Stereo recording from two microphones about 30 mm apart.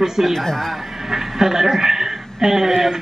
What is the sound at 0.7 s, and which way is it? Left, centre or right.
A woman's voice, centre.